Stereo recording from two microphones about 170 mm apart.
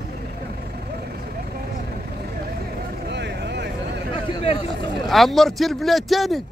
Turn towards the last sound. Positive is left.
turn(degrees=0)  # may be behind; listen again after turning